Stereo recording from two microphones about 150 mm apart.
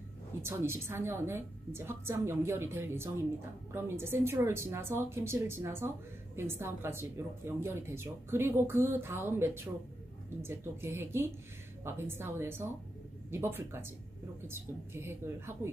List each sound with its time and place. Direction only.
0.4 s speech: 15° right (ahead or behind)